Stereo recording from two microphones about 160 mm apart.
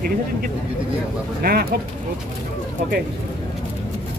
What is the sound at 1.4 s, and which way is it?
Speech, 70° right (ahead or behind).